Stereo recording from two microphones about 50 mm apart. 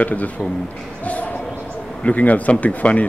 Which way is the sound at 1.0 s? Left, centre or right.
Left.